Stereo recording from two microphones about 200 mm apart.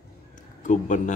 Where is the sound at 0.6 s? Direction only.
40° left (ahead or behind).